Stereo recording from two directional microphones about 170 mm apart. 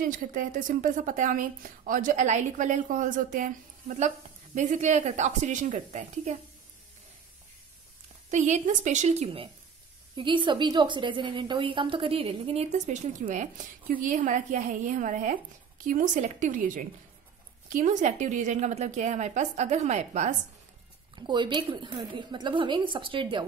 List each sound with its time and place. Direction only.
0.0 s a woman's voice: 55° right (ahead or behind)
8.3 s a woman's voice: 45° right (ahead or behind)
21.1 s a woman's voice: 25° right (ahead or behind)